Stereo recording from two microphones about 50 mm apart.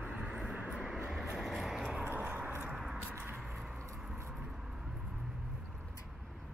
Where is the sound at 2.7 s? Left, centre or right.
Centre.